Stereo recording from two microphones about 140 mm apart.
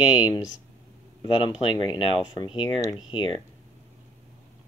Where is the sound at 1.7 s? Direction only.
35° left (ahead or behind).